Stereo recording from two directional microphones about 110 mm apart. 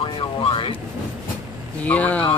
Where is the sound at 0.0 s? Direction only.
55° left (ahead or behind).